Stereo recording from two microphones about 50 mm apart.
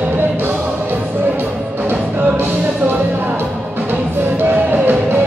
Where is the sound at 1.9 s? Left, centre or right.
Right.